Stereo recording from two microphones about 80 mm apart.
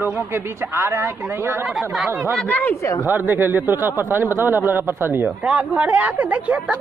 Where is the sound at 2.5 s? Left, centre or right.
Left.